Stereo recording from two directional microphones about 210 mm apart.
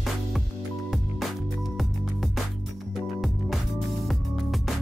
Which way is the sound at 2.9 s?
Centre (ahead or behind).